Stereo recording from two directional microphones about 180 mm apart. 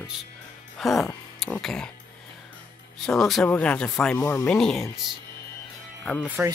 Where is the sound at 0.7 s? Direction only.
Centre (ahead or behind).